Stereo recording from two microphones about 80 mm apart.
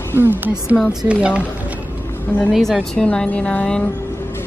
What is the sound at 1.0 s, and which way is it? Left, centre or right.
Speech, centre.